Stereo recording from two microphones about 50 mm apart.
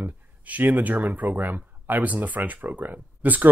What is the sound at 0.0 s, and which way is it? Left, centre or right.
Speech, right.